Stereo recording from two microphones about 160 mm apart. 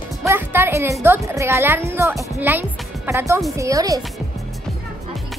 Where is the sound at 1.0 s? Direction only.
15° right (ahead or behind).